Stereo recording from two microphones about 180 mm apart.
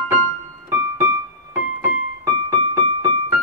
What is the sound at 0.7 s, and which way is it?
Keyboard, 15° right (ahead or behind).